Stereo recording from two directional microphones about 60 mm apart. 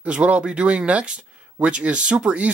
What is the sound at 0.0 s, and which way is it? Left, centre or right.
Speech, right.